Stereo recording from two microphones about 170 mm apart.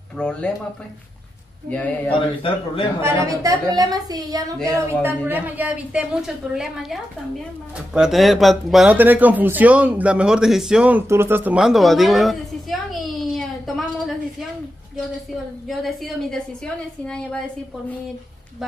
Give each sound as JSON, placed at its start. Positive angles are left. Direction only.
{"t": 0.2, "sound": "speech", "side_deg": 5}
{"t": 1.7, "sound": "a man's voice", "side_deg": 10}
{"t": 3.0, "sound": "a woman's voice", "side_deg": -20}
{"t": 13.2, "sound": "a sound", "side_deg": 0}
{"t": 15.7, "sound": "speech", "side_deg": 0}